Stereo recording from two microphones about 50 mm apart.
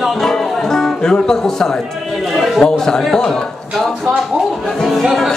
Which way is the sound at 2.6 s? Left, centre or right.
Centre.